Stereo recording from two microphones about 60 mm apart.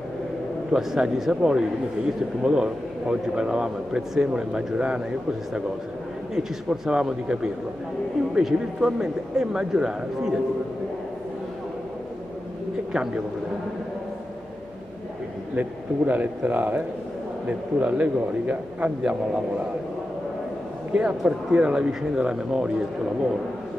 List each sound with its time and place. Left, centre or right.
0.7 s speech: centre
6.3 s speech: centre
12.9 s speech: centre
16.1 s a man's voice: right
21.2 s speech: centre